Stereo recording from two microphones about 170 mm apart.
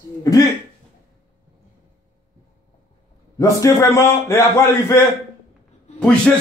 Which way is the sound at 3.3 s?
15° left (ahead or behind).